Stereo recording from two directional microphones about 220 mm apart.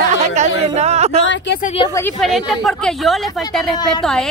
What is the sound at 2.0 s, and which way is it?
Speech, 5° left (ahead or behind).